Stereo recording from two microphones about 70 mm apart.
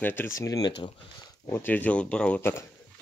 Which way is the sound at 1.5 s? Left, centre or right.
Left.